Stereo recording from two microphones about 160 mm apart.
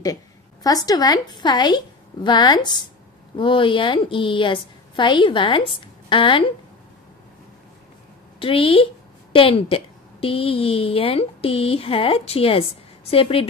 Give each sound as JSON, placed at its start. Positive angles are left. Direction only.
{"t": 0.7, "sound": "a woman's voice", "side_deg": 25}
{"t": 8.4, "sound": "a woman's voice", "side_deg": 35}